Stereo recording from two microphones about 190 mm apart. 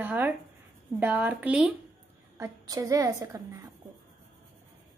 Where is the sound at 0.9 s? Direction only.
10° right (ahead or behind).